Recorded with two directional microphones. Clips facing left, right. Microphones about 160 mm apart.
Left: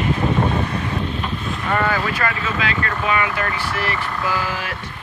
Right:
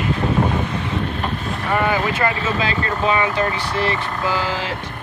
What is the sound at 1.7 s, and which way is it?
Speech, 15° right (ahead or behind).